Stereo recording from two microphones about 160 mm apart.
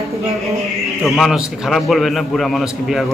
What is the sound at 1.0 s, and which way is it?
A man's voice, centre (ahead or behind).